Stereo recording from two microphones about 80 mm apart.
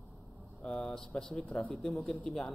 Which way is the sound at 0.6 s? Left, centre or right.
Centre.